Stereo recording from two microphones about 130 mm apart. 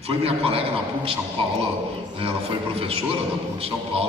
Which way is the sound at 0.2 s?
50° right (ahead or behind).